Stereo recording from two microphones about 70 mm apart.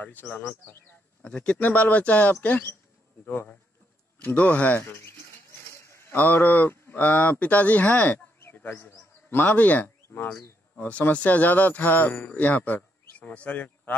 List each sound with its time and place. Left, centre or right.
0.0 s speech: left
1.2 s speech: centre
4.2 s speech: left
4.8 s a sound: left
6.1 s speech: left
8.4 s bird: left
10.0 s a sound: left
10.8 s speech: centre